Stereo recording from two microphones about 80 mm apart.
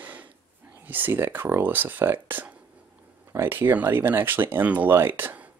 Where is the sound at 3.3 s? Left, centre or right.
Right.